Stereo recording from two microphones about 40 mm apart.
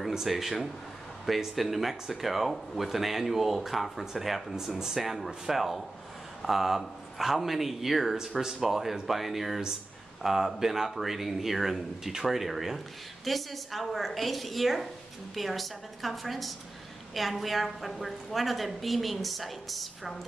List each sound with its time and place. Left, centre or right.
0.1 s a woman's voice: centre